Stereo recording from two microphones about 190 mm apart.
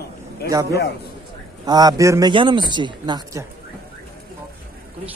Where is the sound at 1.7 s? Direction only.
20° right (ahead or behind).